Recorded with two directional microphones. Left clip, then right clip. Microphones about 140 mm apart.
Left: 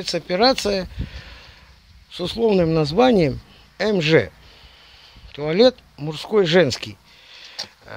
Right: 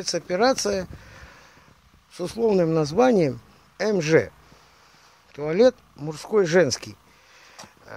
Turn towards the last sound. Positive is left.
turn(degrees=40)  # may be behind; listen again after turning